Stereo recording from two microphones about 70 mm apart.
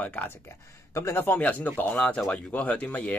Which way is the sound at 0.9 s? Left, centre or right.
Left.